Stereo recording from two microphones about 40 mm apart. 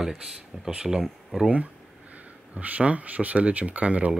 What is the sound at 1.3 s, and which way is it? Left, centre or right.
Speech, centre.